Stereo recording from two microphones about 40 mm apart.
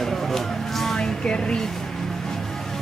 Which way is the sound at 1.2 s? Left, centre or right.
Left.